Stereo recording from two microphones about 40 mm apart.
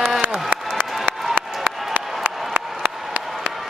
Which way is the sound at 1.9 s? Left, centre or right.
Right.